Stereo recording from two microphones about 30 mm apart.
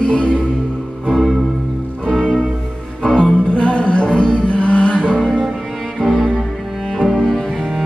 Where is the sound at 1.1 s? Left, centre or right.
Centre.